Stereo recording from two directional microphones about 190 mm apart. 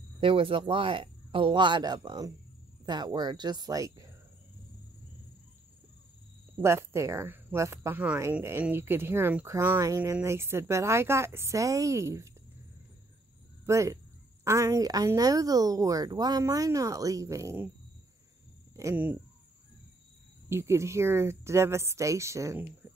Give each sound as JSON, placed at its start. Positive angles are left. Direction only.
{"t": 0.2, "sound": "speech", "side_deg": -25}
{"t": 6.6, "sound": "speech", "side_deg": -15}
{"t": 13.7, "sound": "speech", "side_deg": -15}
{"t": 18.8, "sound": "speech", "side_deg": -10}
{"t": 20.4, "sound": "speech", "side_deg": -15}